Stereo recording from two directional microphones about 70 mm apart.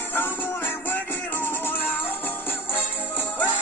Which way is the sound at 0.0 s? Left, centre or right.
Left.